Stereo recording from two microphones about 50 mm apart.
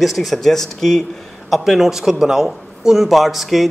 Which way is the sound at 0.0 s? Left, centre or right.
Centre.